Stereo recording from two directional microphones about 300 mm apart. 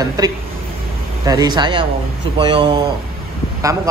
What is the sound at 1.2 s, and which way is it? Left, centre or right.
Speech, centre.